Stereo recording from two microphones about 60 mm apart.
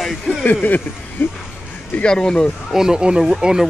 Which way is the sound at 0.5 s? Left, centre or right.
Left.